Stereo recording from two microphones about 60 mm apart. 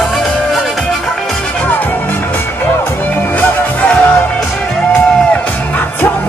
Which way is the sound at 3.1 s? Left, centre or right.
Left.